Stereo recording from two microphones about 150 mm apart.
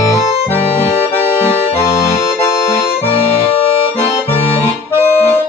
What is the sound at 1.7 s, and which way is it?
Accordion, 20° left (ahead or behind).